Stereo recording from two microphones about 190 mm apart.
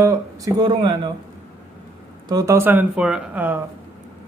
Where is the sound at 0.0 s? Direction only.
20° right (ahead or behind).